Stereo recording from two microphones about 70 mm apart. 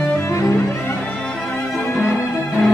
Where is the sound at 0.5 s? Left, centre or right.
Left.